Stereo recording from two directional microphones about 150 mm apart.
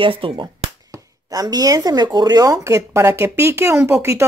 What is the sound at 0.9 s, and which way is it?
Speech, 25° right (ahead or behind).